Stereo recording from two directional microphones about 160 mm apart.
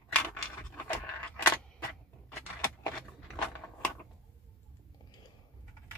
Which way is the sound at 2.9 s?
5° left (ahead or behind).